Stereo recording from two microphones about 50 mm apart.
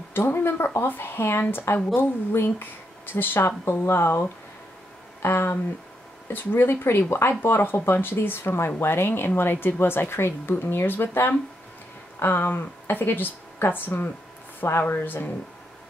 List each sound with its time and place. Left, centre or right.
0.1 s speech: left